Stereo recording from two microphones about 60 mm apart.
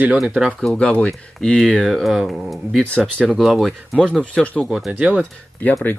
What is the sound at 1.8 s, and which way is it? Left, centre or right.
Speech, centre.